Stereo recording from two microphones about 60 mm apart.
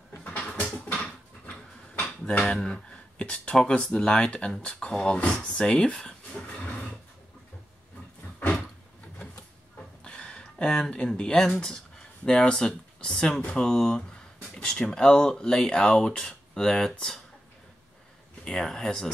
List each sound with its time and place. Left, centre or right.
0.5 s a sound: centre
2.3 s speech: centre
10.0 s speech: centre
18.4 s speech: centre